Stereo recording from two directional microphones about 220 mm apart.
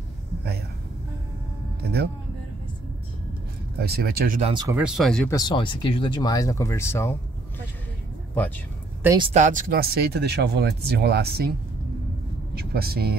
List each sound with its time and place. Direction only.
3.8 s speech: 45° right (ahead or behind)
4.4 s speech: 25° right (ahead or behind)
4.6 s speech: 5° right (ahead or behind)
5.3 s speech: 20° left (ahead or behind)
9.0 s speech: 15° right (ahead or behind)
9.3 s speech: 35° right (ahead or behind)
12.5 s speech: 45° right (ahead or behind)